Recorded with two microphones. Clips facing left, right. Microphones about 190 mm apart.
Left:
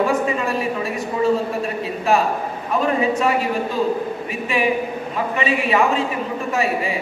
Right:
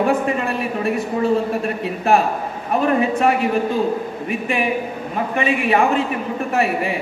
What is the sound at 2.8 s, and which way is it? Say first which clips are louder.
A man's voice: right 2 dB; 55° right (ahead or behind).